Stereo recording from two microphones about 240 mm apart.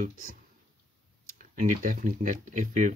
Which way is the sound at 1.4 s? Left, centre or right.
Right.